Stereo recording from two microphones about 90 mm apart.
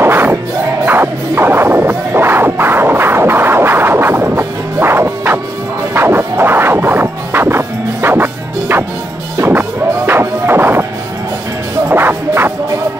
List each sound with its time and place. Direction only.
0.0 s music: 25° right (ahead or behind)
11.9 s music: 25° right (ahead or behind)